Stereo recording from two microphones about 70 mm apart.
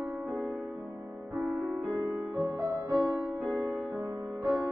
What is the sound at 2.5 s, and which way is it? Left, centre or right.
Music, right.